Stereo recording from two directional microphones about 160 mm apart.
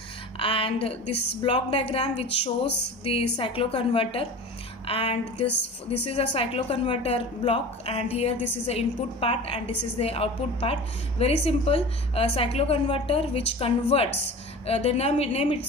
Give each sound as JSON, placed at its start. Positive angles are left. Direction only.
{"t": 0.4, "sound": "a woman's voice", "side_deg": 35}